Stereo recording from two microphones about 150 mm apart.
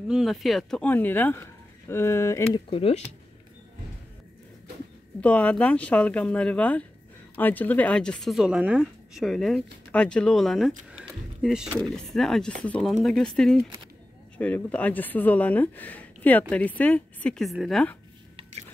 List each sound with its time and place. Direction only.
0.1 s speech: centre (ahead or behind); by 2.6 s 20° left (ahead or behind)
2.7 s speech: 40° left (ahead or behind)
5.2 s speech: 10° left (ahead or behind)